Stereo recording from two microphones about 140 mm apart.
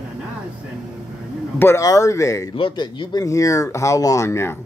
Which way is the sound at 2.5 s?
35° left (ahead or behind).